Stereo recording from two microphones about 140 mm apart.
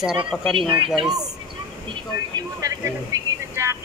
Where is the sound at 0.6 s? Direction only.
40° right (ahead or behind).